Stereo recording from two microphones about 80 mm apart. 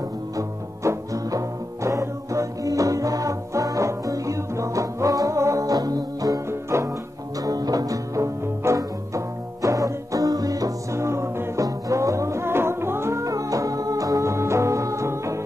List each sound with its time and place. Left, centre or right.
0.4 s music: right
6.7 s music: right
7.4 s music: right